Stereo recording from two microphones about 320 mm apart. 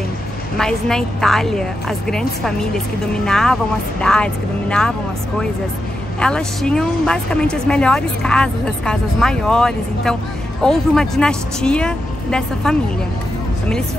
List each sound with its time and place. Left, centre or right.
0.6 s speech: centre
6.1 s speech: centre